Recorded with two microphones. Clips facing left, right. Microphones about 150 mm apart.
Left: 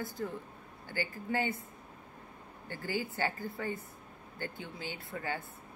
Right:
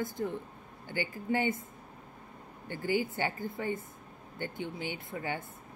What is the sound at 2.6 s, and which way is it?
Speech, 20° right (ahead or behind).